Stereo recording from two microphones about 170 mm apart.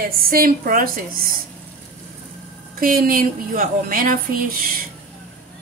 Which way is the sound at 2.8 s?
55° right (ahead or behind).